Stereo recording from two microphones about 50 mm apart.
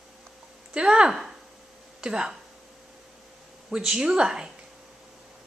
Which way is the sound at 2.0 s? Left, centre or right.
Centre.